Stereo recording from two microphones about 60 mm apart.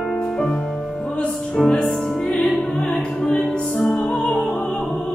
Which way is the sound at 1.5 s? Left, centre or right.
Centre.